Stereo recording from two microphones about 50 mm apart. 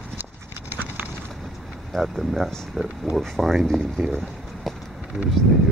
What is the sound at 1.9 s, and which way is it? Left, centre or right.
Speech, centre.